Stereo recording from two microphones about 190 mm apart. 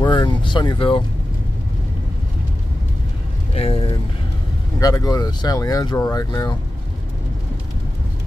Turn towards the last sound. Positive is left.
turn(degrees=20)  # may be behind; listen again after turning